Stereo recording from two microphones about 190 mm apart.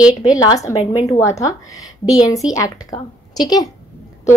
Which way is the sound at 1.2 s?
15° left (ahead or behind).